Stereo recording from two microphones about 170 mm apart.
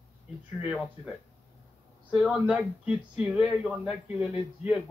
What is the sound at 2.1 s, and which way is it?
Speech, 5° right (ahead or behind).